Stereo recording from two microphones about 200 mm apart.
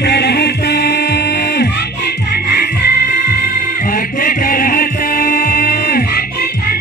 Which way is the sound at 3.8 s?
45° left (ahead or behind).